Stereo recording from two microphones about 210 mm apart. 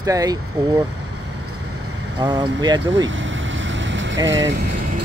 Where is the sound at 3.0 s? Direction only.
65° right (ahead or behind).